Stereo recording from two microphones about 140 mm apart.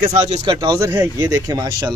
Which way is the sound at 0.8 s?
20° right (ahead or behind).